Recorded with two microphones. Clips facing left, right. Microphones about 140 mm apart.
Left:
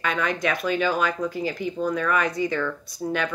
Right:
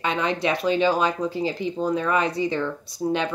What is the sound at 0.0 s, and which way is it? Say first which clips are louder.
Speech: right 1 dB; 25° right (ahead or behind).